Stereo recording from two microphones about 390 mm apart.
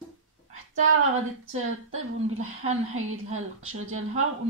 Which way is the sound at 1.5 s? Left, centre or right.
Right.